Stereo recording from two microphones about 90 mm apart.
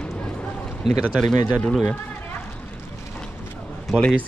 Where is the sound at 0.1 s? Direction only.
10° left (ahead or behind).